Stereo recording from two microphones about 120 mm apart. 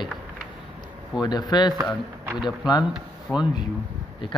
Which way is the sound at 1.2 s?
35° left (ahead or behind).